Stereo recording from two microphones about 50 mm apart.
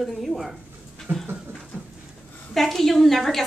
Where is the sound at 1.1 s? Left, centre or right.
Right.